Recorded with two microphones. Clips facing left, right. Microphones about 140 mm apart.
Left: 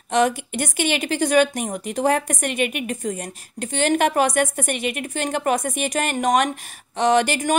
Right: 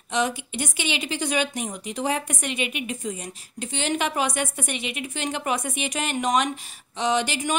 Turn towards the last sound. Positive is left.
turn(degrees=50)  # may be behind; listen again after turning